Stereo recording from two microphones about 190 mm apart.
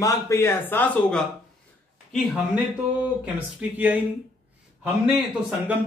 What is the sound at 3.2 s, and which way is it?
A man's voice, 10° right (ahead or behind).